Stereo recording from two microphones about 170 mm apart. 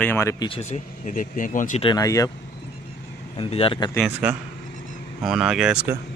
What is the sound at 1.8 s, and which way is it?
Speech, 20° left (ahead or behind).